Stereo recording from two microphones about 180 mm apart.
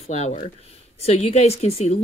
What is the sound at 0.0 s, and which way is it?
A woman's voice, 40° left (ahead or behind).